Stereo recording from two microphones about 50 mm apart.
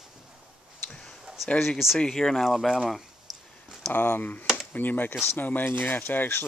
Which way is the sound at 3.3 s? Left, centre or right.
Centre.